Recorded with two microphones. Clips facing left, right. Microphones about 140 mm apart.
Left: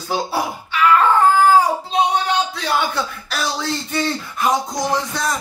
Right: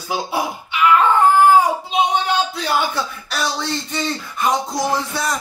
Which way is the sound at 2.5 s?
5° right (ahead or behind).